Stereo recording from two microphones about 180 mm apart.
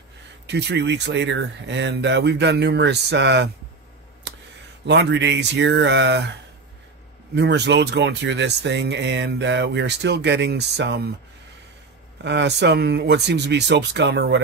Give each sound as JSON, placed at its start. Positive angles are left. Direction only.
{"t": 0.5, "sound": "speech", "side_deg": -70}
{"t": 4.8, "sound": "speech", "side_deg": -75}
{"t": 7.3, "sound": "speech", "side_deg": -70}
{"t": 12.2, "sound": "speech", "side_deg": -75}